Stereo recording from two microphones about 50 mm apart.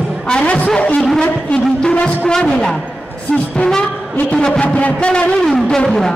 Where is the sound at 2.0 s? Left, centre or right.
Centre.